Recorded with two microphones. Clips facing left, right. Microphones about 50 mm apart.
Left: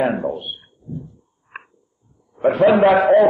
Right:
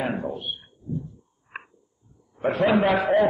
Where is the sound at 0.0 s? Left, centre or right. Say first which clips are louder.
Left 8 dB; centre.